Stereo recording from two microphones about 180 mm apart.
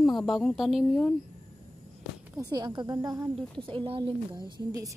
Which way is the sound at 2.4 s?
25° right (ahead or behind).